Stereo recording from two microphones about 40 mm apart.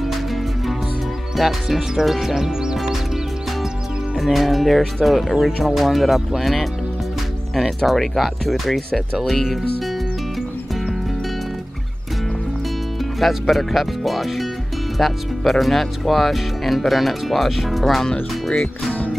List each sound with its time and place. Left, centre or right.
0.0 s music: centre
1.3 s speech: centre
4.2 s speech: centre
13.2 s speech: centre
18.5 s speech: left